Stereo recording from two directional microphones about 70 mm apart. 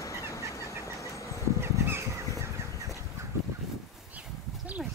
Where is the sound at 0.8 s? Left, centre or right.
Left.